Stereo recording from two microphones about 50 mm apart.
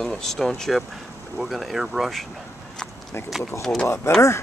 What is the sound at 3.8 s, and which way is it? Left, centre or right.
Speech, left.